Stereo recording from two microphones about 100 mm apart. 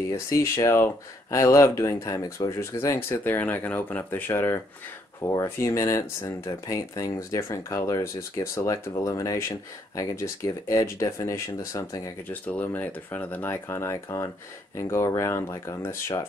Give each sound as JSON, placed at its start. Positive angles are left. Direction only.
{"t": 0.1, "sound": "speech", "side_deg": 30}
{"t": 12.3, "sound": "speech", "side_deg": 20}